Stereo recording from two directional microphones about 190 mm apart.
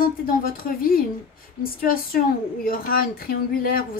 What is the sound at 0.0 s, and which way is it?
Speech, 50° left (ahead or behind).